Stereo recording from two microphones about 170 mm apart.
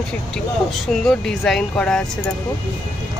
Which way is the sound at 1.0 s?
Centre (ahead or behind).